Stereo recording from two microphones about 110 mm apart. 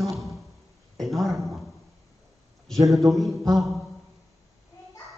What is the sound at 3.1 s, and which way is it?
Speech, centre (ahead or behind).